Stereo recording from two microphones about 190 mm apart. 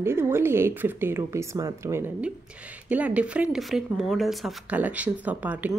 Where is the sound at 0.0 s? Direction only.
15° right (ahead or behind).